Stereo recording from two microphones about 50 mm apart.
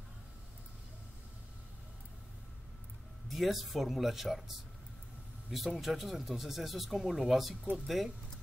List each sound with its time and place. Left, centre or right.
3.3 s speech: centre